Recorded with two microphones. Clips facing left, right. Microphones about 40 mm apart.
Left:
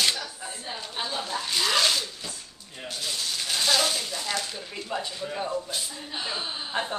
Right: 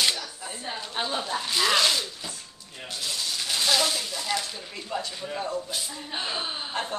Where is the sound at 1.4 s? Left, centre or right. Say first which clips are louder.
Right 1 dB; centre.